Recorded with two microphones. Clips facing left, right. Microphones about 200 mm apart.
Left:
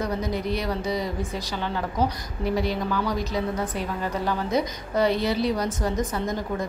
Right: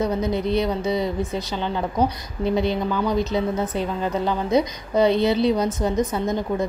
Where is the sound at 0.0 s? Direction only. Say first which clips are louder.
Right 5 dB; 25° right (ahead or behind).